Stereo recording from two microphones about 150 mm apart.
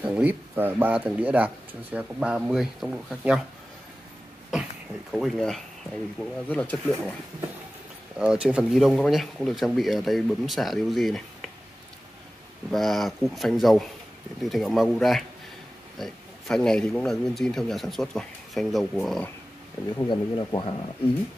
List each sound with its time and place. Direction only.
0.0 s speech: 10° right (ahead or behind)
5.1 s speech: centre (ahead or behind)
8.2 s speech: 5° right (ahead or behind)
12.7 s speech: centre (ahead or behind)
20.1 s speech: 30° left (ahead or behind)